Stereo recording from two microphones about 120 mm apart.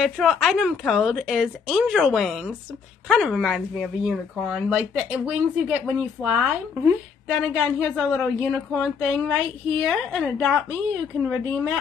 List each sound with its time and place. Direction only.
0.0 s speech: centre (ahead or behind)